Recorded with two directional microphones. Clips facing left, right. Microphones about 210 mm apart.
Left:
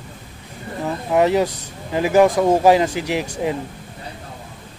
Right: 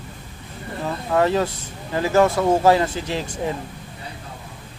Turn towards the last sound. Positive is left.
turn(degrees=15)  # may be behind; listen again after turning